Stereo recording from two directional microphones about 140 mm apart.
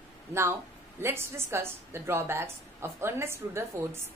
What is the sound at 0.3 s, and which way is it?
A woman's voice, 20° right (ahead or behind).